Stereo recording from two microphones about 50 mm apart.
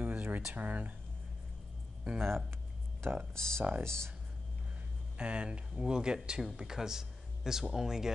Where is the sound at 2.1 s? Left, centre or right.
Right.